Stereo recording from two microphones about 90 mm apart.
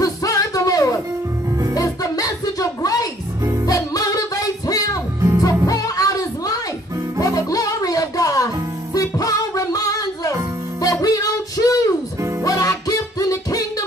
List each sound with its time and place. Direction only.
0.0 s music: 40° left (ahead or behind)